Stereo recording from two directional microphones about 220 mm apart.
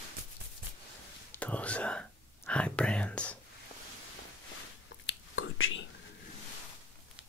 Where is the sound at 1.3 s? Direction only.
5° left (ahead or behind).